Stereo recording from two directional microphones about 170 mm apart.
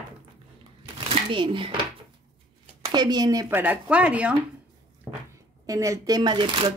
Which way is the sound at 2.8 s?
25° right (ahead or behind).